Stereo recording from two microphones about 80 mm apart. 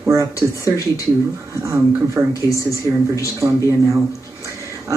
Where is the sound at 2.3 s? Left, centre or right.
Left.